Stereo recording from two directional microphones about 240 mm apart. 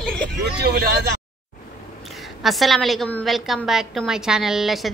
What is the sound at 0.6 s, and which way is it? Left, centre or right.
Speech, right.